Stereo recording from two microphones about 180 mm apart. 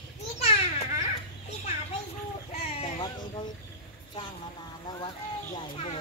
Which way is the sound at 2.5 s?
35° left (ahead or behind).